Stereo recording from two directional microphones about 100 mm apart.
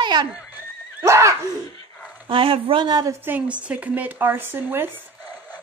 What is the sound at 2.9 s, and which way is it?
Neigh, 35° right (ahead or behind).